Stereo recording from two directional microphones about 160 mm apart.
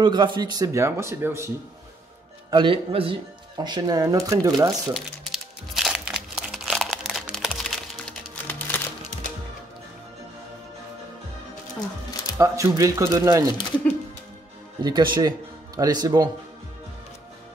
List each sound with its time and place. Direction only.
0.0 s speech: 30° right (ahead or behind)
2.5 s speech: 30° right (ahead or behind)
4.9 s crumpling: centre (ahead or behind)
8.5 s music: 10° left (ahead or behind)
12.4 s speech: 20° right (ahead or behind)
14.8 s speech: 25° right (ahead or behind)